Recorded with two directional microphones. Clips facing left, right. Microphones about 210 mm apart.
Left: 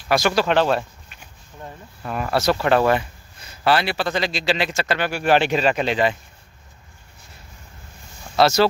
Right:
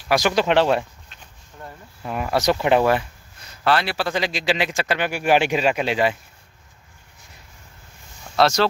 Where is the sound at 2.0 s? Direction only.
10° right (ahead or behind).